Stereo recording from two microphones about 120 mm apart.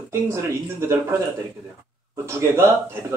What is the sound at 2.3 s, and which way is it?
Speech, 20° right (ahead or behind).